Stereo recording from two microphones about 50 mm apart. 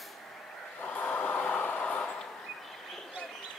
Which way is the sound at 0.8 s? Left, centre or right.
Left.